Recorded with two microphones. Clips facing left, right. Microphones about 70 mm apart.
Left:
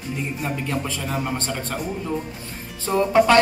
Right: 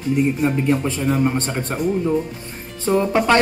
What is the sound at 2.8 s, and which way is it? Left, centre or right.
Speech, right.